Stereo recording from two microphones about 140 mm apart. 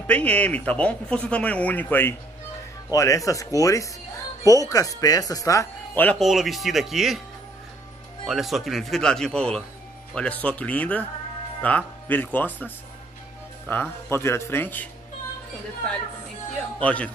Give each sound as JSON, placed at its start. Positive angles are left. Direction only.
{"t": 0.0, "sound": "speech", "side_deg": 10}
{"t": 6.1, "sound": "a man's voice", "side_deg": 0}
{"t": 8.3, "sound": "a man's voice", "side_deg": 0}
{"t": 16.8, "sound": "speech", "side_deg": 10}